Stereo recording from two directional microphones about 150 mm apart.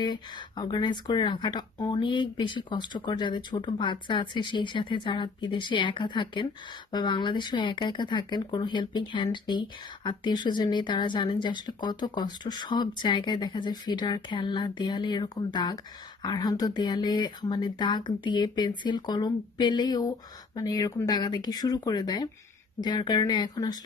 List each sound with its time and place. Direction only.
0.0 s speech: 30° left (ahead or behind)